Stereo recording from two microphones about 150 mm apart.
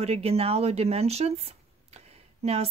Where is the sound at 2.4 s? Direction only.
45° right (ahead or behind).